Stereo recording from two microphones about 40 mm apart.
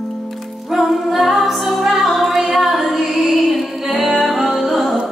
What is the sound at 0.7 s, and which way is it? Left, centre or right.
Music, centre.